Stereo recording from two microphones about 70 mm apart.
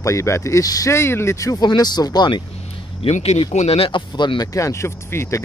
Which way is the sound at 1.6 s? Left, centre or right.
Left.